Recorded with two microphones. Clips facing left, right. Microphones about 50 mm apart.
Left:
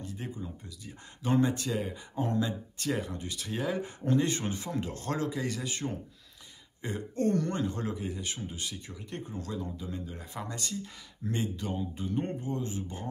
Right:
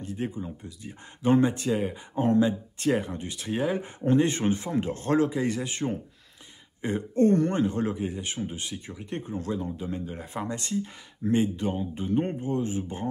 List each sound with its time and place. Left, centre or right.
0.0 s speech: right